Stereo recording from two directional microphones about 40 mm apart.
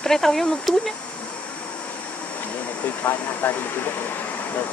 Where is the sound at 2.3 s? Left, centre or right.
Left.